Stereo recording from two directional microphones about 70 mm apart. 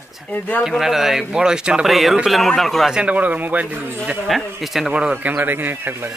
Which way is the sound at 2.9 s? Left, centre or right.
Centre.